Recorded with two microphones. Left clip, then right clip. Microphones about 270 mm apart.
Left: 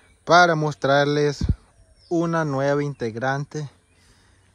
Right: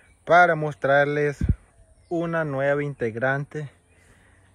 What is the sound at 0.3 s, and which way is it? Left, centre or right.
Speech, left.